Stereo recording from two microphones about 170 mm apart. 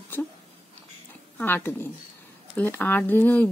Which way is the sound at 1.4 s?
10° left (ahead or behind).